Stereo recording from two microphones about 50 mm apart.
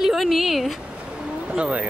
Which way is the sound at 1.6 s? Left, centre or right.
Right.